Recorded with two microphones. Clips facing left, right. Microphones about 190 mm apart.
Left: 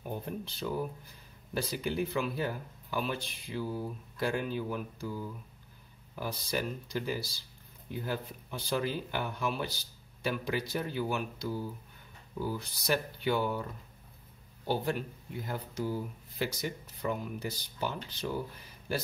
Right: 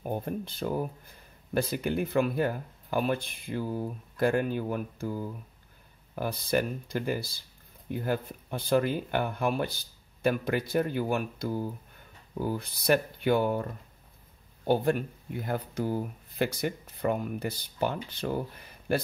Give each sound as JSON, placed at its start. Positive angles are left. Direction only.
{"t": 0.0, "sound": "speech", "side_deg": -50}
{"t": 14.7, "sound": "speech", "side_deg": -55}